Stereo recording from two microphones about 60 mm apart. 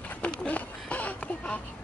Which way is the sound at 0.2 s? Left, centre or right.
Centre.